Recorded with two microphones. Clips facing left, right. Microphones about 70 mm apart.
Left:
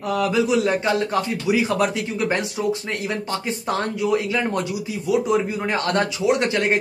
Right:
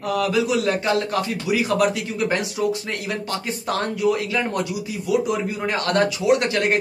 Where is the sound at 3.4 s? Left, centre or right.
Centre.